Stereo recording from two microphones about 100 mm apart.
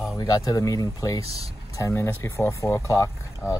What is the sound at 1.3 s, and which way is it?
Speech, 80° right.